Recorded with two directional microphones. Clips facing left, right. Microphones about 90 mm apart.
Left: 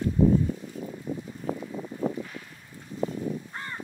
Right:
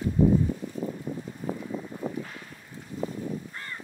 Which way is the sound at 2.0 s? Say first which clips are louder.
Left 5 dB; 65° left (ahead or behind).